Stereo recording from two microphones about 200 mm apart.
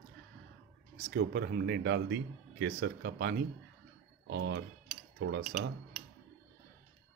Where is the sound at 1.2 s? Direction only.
55° right (ahead or behind).